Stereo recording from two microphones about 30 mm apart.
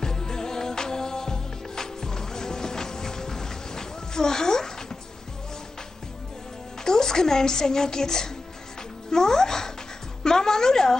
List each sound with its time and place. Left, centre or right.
0.0 s music: centre
6.8 s a woman's voice: centre
10.2 s music: centre